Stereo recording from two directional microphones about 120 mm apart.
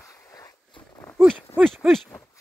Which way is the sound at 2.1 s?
20° left (ahead or behind).